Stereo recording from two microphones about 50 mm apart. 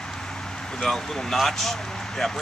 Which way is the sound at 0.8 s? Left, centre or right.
Centre.